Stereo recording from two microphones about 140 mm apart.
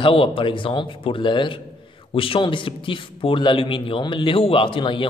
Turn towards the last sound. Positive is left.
turn(degrees=35)  # may be behind; listen again after turning